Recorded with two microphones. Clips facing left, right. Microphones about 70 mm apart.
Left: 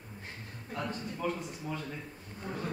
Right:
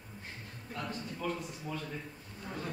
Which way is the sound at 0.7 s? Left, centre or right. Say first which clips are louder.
Left 3 dB; left.